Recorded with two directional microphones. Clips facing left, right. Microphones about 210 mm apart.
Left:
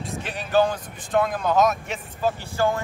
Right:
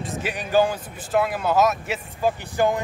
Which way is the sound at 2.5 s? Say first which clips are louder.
Right 2 dB; 15° right (ahead or behind).